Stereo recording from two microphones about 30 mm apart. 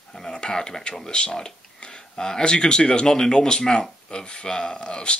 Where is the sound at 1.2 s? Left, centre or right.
Left.